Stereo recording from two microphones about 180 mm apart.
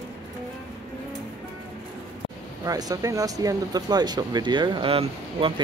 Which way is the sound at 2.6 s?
20° right (ahead or behind).